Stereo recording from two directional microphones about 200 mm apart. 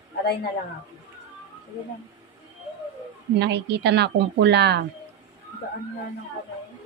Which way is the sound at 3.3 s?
60° right (ahead or behind).